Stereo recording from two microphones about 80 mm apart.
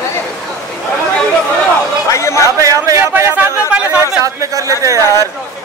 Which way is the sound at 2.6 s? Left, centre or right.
Right.